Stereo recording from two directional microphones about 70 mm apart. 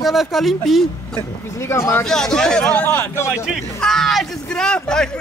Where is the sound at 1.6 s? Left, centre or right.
Left.